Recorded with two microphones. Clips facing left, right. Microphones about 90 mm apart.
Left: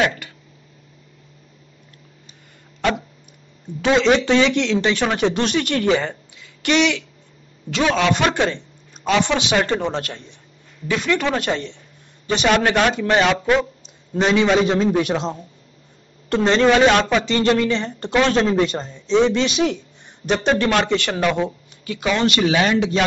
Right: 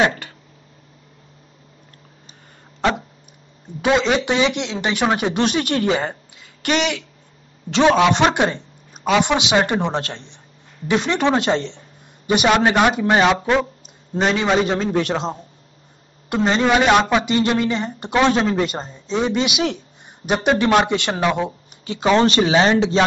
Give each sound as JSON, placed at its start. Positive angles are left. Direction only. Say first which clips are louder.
{"t": 0.0, "sound": "a sound", "louder": "right 2 dB", "side_deg": -35}
{"t": 3.8, "sound": "a man's voice", "louder": "left 2 dB", "side_deg": -10}
{"t": 5.9, "sound": "a sound", "louder": "even", "side_deg": -35}
{"t": 7.7, "sound": "a man's voice", "louder": "right 4 dB", "side_deg": -25}
{"t": 12.3, "sound": "a man's voice", "louder": "right 2 dB", "side_deg": -15}
{"t": 16.3, "sound": "a man's voice", "louder": "left 2 dB", "side_deg": -10}
{"t": 18.4, "sound": "speech", "louder": "left 2 dB", "side_deg": -5}
{"t": 18.8, "sound": "speech", "louder": "even", "side_deg": -30}
{"t": 19.0, "sound": "a man's voice", "louder": "left 4 dB", "side_deg": -10}
{"t": 21.8, "sound": "a man's voice", "louder": "right 4 dB", "side_deg": -30}